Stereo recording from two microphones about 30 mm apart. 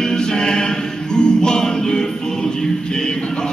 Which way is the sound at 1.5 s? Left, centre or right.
Centre.